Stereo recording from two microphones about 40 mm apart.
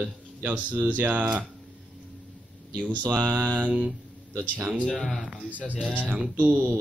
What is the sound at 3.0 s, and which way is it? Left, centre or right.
Speech, right.